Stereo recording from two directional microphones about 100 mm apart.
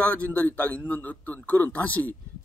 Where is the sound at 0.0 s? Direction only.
15° left (ahead or behind).